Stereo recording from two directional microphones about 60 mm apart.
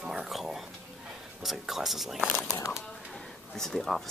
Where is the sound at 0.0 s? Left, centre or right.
Centre.